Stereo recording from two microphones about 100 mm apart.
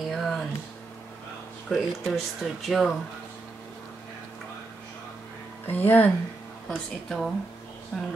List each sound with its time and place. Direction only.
0.1 s a sound: 5° left (ahead or behind)
1.7 s speech: centre (ahead or behind)
5.7 s speech: 20° left (ahead or behind)
7.1 s speech: centre (ahead or behind)